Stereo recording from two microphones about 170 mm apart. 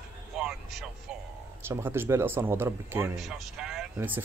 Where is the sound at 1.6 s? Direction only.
15° right (ahead or behind).